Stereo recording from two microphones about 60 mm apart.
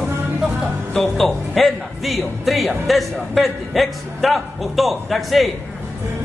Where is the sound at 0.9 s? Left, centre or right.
Centre.